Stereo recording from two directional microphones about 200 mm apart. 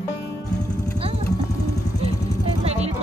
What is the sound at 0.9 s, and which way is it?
Vehicle, 30° right (ahead or behind).